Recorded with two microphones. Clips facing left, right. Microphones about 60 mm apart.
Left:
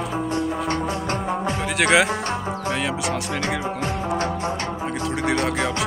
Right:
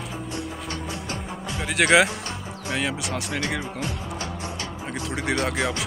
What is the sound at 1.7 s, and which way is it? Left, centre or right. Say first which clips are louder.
Speech: even; centre.